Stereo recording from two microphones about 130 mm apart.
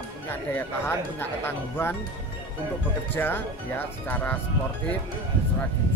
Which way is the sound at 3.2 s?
15° left (ahead or behind).